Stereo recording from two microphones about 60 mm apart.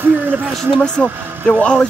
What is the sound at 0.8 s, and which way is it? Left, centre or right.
Speech, centre.